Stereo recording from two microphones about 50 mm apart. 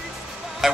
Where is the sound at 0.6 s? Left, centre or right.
Centre.